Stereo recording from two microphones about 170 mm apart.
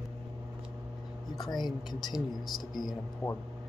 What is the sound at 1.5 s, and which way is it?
Speech, 25° left (ahead or behind).